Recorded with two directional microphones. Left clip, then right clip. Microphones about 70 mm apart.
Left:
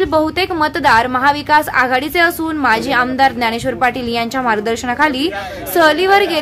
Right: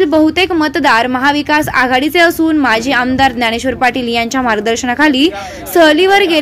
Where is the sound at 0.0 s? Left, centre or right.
Right.